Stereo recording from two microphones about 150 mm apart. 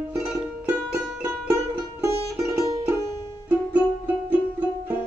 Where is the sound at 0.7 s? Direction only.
15° right (ahead or behind).